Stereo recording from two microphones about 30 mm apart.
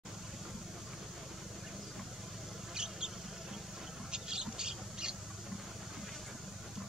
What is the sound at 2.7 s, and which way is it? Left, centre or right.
Mouse, right.